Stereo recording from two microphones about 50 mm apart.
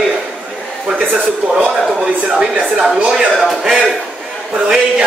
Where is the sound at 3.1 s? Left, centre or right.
Centre.